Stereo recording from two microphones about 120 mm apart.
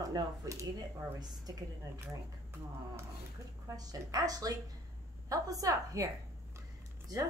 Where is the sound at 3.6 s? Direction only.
30° right (ahead or behind).